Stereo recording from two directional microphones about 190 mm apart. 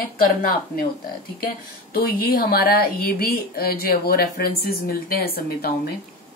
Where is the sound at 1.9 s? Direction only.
55° left (ahead or behind).